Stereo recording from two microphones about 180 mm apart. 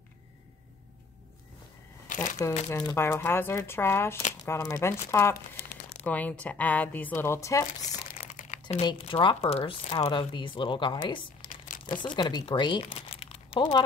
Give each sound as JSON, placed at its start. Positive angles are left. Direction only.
{"t": 2.7, "sound": "speech", "side_deg": 15}
{"t": 7.8, "sound": "crumpling", "side_deg": 40}
{"t": 8.8, "sound": "speech", "side_deg": 30}
{"t": 11.4, "sound": "crumpling", "side_deg": 50}
{"t": 11.8, "sound": "speech", "side_deg": 25}